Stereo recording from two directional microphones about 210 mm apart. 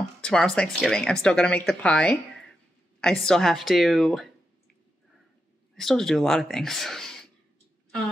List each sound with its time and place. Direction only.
0.2 s speech: 5° left (ahead or behind)
5.8 s speech: centre (ahead or behind)